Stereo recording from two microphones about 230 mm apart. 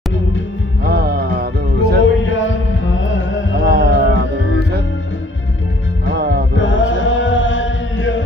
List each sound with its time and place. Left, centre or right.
0.8 s music: right
2.0 s music: left
6.1 s music: right
6.5 s chant: left